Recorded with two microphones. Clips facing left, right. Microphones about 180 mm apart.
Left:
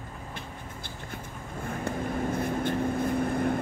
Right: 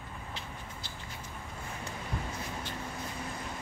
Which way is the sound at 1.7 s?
50° left (ahead or behind).